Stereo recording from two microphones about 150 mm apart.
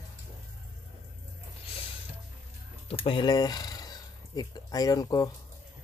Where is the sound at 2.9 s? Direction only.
35° left (ahead or behind).